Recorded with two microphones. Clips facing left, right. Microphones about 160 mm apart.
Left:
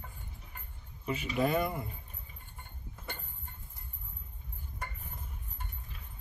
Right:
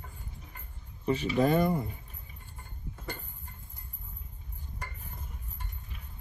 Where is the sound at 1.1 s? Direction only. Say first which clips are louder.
Right 5 dB; 35° right (ahead or behind).